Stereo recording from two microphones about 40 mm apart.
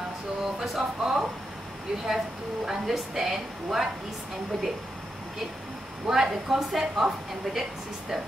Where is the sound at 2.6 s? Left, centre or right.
Centre.